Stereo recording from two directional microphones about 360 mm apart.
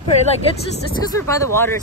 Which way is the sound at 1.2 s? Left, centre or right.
Centre.